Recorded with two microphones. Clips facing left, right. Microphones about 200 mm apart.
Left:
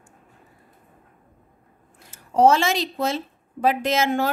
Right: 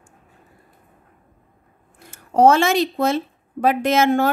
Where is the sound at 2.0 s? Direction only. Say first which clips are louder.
Right 3 dB; 55° right (ahead or behind).